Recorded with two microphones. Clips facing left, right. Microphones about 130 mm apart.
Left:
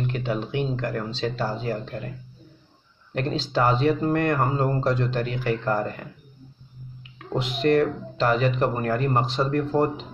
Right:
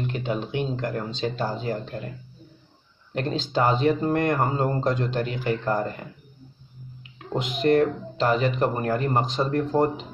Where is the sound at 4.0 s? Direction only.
20° right (ahead or behind).